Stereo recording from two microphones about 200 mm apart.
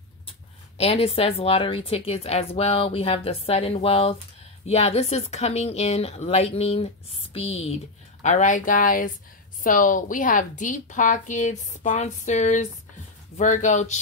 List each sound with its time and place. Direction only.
0.7 s a woman's voice: 30° left (ahead or behind)